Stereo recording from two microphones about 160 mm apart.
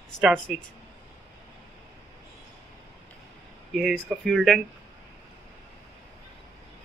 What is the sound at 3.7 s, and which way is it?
Speech, centre (ahead or behind).